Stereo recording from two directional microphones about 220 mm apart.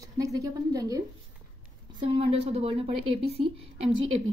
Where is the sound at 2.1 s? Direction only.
25° right (ahead or behind).